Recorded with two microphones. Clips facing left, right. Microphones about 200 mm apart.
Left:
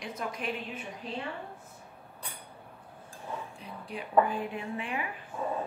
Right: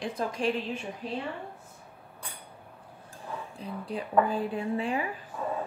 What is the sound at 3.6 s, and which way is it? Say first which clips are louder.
A woman's voice: right 5 dB; 35° right (ahead or behind).